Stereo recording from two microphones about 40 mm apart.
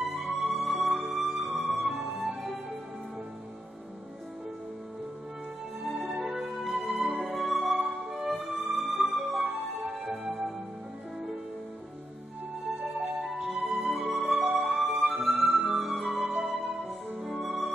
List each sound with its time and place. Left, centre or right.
0.0 s music: centre
5.9 s music: centre
7.0 s music: centre
7.2 s music: centre
10.1 s music: right
12.8 s music: centre
14.7 s music: right
15.0 s music: centre